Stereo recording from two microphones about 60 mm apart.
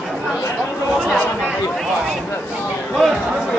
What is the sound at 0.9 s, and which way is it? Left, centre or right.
Chatter, centre.